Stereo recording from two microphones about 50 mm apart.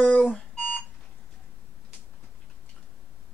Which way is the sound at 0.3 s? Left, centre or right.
Left.